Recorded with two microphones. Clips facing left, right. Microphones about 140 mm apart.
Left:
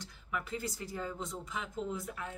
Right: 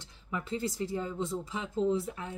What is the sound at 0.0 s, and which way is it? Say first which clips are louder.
Speech: right 2 dB; 30° right (ahead or behind).